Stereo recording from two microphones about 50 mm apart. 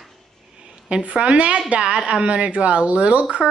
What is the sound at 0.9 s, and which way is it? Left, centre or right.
A woman's voice, right.